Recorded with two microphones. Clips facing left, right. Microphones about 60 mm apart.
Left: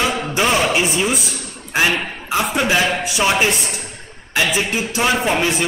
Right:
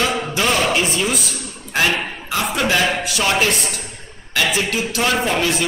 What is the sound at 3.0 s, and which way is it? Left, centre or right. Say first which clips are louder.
A man's voice: left 1 dB; centre.